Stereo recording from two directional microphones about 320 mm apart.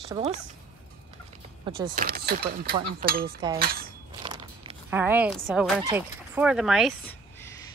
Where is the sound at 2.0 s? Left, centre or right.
Right.